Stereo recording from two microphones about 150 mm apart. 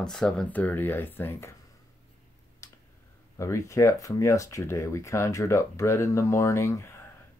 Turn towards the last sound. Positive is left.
turn(degrees=20)  # may be behind; listen again after turning